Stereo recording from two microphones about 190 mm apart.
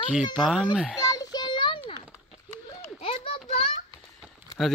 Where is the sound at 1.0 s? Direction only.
20° left (ahead or behind).